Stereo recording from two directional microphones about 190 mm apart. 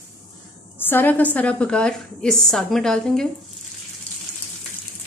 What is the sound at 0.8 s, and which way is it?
A woman's voice, 10° left (ahead or behind).